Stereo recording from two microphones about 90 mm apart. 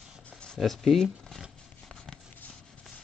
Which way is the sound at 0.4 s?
5° left (ahead or behind).